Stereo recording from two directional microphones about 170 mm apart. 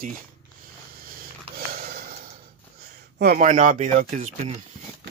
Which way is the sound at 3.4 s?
45° right (ahead or behind).